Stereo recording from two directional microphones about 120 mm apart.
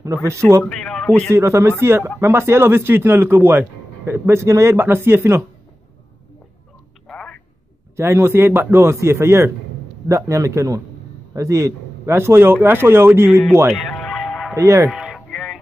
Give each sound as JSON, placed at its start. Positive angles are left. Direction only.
{"t": 0.0, "sound": "speech", "side_deg": -25}
{"t": 0.7, "sound": "speech", "side_deg": 5}
{"t": 1.3, "sound": "speech", "side_deg": -20}
{"t": 7.1, "sound": "a sound", "side_deg": 10}
{"t": 7.9, "sound": "speech", "side_deg": -20}
{"t": 13.7, "sound": "music", "side_deg": 0}
{"t": 14.5, "sound": "speech", "side_deg": -25}
{"t": 14.9, "sound": "music", "side_deg": -5}